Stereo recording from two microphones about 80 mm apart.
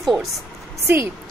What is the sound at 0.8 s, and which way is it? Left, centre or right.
Speech, right.